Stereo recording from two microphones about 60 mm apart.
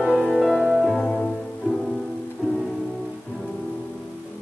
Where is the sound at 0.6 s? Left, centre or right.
Centre.